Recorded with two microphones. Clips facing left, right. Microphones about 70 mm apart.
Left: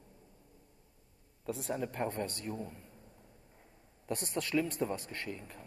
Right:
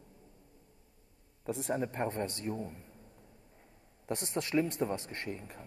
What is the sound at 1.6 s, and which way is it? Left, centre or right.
Speech, right.